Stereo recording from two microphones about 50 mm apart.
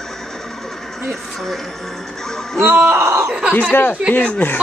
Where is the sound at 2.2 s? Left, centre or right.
Centre.